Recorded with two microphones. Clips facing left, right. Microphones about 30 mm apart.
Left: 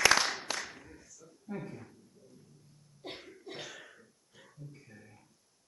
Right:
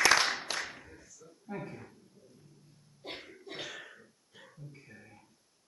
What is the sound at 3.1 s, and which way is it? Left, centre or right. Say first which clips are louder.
Cough: right 2 dB; centre.